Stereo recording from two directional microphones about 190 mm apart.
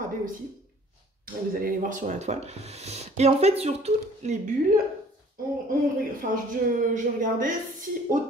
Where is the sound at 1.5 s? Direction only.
45° right (ahead or behind).